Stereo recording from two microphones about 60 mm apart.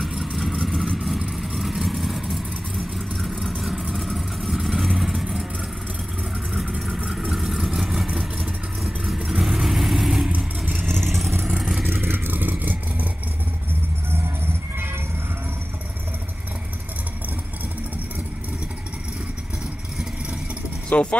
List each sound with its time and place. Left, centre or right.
0.1 s vehicle: centre
7.1 s vehicle: centre
10.3 s vehicle: right
11.1 s vehicle: centre
11.9 s vehicle: right
14.1 s music: right
20.9 s speech: left